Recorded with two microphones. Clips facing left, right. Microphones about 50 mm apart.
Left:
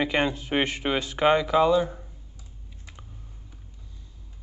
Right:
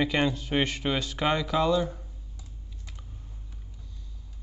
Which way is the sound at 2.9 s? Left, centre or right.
Left.